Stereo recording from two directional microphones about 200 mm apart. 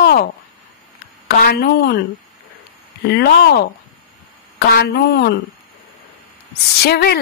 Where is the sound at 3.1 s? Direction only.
55° left (ahead or behind).